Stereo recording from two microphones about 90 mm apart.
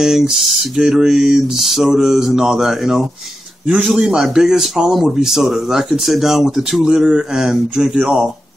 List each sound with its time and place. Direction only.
0.0 s speech: 5° right (ahead or behind)
3.6 s a man's voice: 20° right (ahead or behind)
3.9 s speech: 5° right (ahead or behind)